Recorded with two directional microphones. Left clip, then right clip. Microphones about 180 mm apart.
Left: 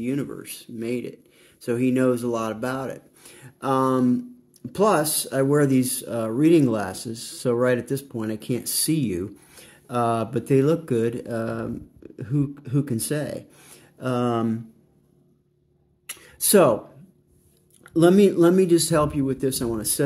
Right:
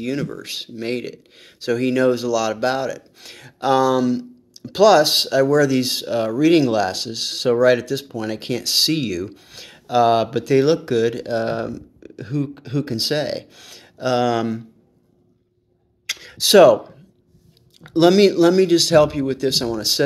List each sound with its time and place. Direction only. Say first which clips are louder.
0.0 s speech: right 3 dB; 30° left (ahead or behind)
16.3 s speech: right 7 dB; 30° left (ahead or behind)
17.7 s speech: right 3 dB; 20° left (ahead or behind)